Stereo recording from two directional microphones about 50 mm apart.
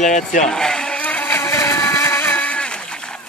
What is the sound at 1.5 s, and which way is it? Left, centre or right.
Vehicle, left.